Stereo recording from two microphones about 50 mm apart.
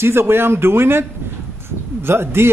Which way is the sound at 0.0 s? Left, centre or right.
Right.